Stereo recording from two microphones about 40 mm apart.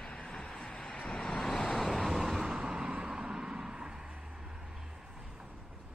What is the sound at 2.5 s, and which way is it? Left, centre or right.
Vehicle, right.